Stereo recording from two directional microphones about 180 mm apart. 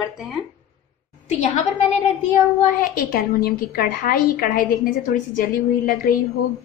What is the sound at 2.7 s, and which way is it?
A woman's voice, 50° left (ahead or behind).